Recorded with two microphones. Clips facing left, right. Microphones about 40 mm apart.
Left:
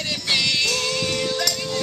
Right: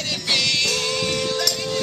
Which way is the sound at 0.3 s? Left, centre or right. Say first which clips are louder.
Even; centre.